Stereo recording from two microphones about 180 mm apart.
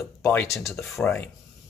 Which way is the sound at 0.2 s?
15° left (ahead or behind).